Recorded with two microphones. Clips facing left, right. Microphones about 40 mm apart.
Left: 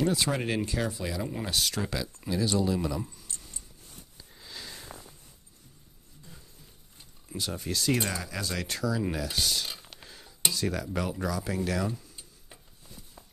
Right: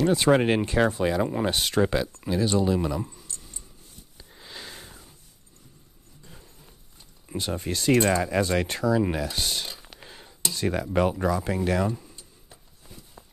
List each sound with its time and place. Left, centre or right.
0.0 s speech: right
4.4 s sniff: right
7.2 s speech: right
10.0 s a sound: right
10.5 s speech: right
13.2 s a sound: centre